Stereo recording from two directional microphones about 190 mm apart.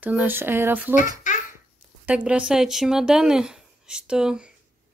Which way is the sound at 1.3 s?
40° left (ahead or behind).